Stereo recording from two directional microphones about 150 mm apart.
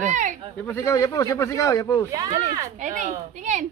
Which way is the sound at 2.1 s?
25° right (ahead or behind).